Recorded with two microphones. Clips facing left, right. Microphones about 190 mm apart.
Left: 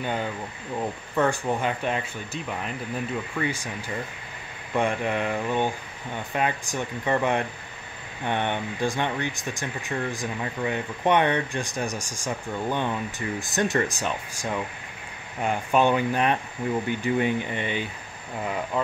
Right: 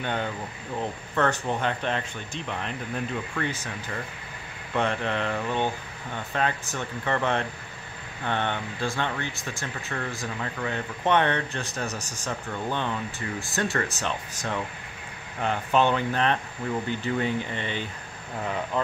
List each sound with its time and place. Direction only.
0.0 s speech: 5° left (ahead or behind)